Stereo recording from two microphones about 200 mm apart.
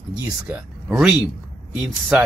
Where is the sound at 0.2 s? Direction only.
5° right (ahead or behind).